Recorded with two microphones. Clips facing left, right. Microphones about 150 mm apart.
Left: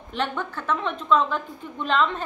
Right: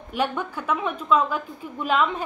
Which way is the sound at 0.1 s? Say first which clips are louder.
Right 2 dB; 10° right (ahead or behind).